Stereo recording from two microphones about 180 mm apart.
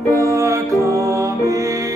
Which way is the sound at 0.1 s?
15° right (ahead or behind).